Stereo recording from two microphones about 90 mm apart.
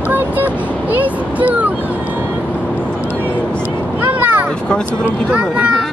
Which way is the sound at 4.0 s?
20° right (ahead or behind).